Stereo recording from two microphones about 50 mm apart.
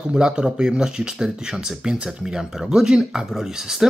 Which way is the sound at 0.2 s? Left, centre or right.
Centre.